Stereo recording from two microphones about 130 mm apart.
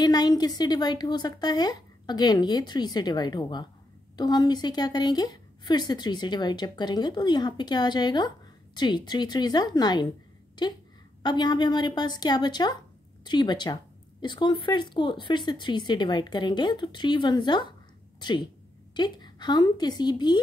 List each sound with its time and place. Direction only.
0.0 s speech: 30° left (ahead or behind)
11.2 s speech: 35° left (ahead or behind)
18.9 s speech: 35° left (ahead or behind)